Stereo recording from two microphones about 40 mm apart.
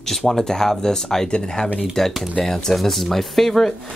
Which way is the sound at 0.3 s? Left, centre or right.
Centre.